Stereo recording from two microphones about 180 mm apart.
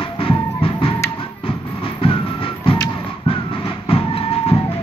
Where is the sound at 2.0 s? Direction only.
30° left (ahead or behind).